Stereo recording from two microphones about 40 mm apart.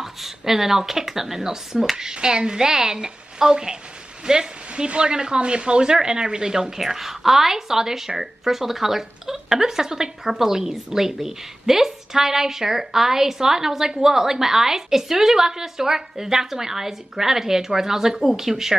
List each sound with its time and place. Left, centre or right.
0.0 s a woman's voice: centre